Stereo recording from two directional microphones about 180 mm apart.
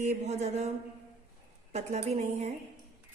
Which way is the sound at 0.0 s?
40° right (ahead or behind).